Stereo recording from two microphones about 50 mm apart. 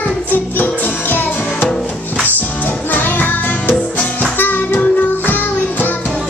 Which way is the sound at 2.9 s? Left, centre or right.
Left.